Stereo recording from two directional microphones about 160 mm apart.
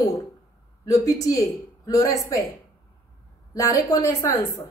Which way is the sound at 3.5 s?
20° left (ahead or behind).